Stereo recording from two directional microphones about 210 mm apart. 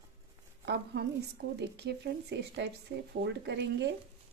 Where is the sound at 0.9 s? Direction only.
50° right (ahead or behind).